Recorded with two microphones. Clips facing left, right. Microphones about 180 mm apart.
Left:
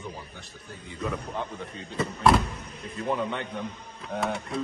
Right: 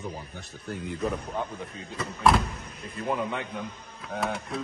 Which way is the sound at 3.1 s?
5° right (ahead or behind).